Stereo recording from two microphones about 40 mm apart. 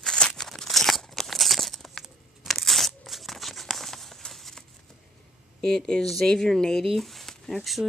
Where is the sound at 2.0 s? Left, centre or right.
Centre.